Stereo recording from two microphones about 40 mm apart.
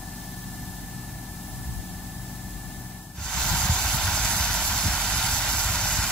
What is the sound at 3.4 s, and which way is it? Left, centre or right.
Vehicle, centre.